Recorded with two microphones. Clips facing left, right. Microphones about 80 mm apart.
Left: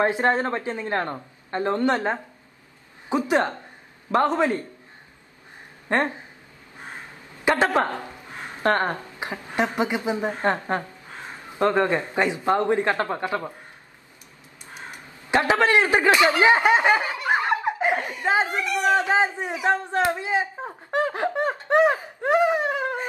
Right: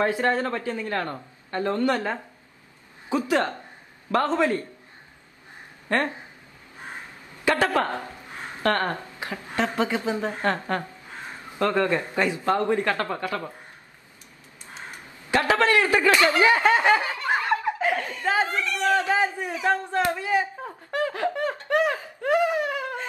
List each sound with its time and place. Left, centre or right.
0.0 s a man's voice: left
5.9 s speech: left
7.4 s a woman's voice: left
15.3 s snicker: left